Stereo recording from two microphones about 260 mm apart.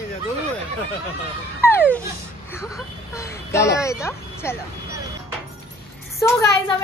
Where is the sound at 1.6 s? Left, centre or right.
Centre.